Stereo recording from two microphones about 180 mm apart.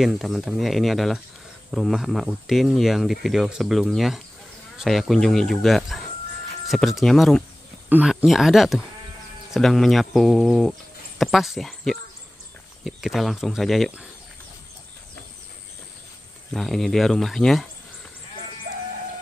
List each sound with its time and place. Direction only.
0.0 s speech: centre (ahead or behind)
16.5 s speech: centre (ahead or behind)